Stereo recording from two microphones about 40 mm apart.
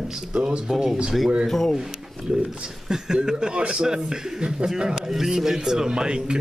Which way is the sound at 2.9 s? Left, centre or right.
Centre.